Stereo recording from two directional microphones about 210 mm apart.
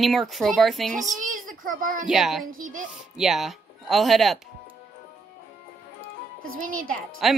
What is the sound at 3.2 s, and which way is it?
Speech, centre (ahead or behind).